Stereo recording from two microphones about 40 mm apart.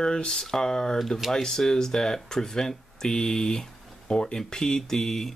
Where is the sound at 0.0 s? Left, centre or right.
Centre.